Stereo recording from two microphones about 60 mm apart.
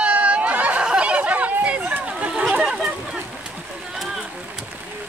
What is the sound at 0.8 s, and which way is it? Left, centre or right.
Chatter, centre.